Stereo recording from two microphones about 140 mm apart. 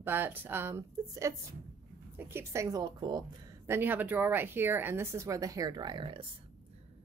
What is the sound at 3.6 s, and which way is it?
Speech, 15° right (ahead or behind).